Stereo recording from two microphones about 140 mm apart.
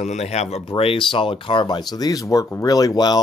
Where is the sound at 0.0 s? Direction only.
55° left (ahead or behind).